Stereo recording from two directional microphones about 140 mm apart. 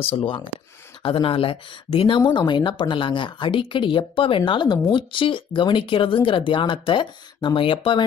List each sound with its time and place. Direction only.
0.0 s speech: 40° left (ahead or behind)